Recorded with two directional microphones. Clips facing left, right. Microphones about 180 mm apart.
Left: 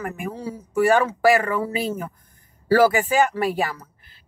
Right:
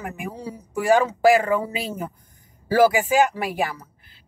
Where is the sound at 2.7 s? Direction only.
15° right (ahead or behind).